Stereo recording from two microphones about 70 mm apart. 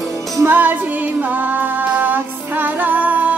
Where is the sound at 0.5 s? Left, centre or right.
Right.